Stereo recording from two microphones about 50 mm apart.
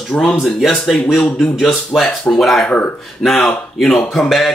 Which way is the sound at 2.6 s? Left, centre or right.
Left.